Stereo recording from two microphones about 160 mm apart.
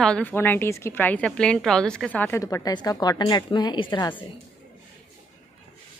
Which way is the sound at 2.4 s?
20° left (ahead or behind).